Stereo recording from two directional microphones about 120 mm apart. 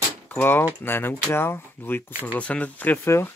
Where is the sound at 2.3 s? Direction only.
10° left (ahead or behind).